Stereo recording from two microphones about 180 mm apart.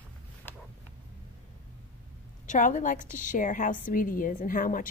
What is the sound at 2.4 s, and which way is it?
A woman's voice, 45° left (ahead or behind).